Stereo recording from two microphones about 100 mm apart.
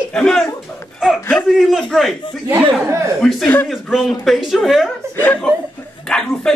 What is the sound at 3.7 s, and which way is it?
Speech, centre (ahead or behind).